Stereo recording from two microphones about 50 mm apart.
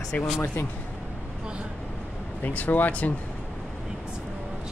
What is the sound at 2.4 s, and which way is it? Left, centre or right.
Speech, left.